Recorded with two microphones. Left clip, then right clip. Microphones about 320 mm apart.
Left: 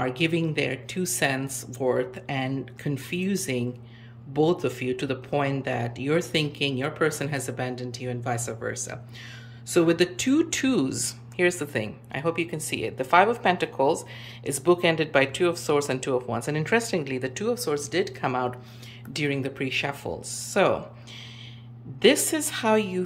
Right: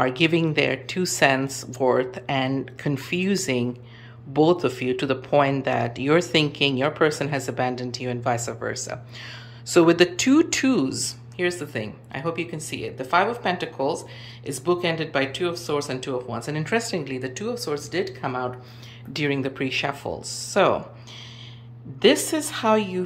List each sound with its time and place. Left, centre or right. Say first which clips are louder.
0.0 s speech: right 5 dB; centre
22.0 s speech: right 2 dB; centre